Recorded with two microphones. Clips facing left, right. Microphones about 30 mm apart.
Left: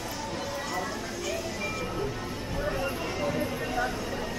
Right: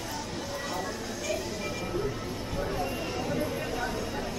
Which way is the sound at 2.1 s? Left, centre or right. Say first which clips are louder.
Even; centre.